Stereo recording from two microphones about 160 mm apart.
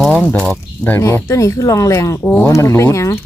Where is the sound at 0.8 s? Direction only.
15° left (ahead or behind).